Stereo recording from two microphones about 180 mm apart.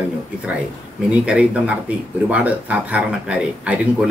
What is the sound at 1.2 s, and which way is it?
Speech, 5° right (ahead or behind).